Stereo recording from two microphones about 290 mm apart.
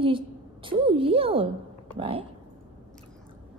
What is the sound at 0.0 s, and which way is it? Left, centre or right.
A woman's voice, centre.